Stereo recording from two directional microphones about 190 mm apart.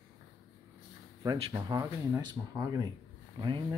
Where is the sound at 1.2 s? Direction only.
15° right (ahead or behind).